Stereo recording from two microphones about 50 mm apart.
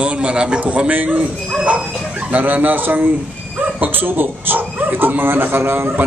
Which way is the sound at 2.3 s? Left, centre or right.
Right.